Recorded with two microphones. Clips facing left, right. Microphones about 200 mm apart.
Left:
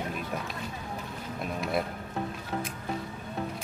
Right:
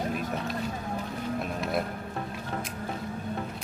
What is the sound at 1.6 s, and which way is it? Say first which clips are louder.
Speech: left 2 dB; centre (ahead or behind).